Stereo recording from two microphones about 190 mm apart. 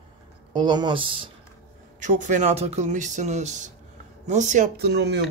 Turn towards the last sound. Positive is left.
turn(degrees=-65)  # may be behind; listen again after turning